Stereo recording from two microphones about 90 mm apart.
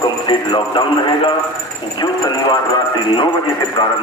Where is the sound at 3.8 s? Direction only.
55° left (ahead or behind).